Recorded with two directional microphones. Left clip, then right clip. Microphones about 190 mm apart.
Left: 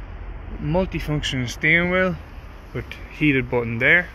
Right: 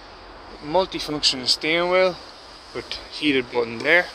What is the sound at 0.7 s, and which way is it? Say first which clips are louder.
Speech: right 2 dB; 5° right (ahead or behind).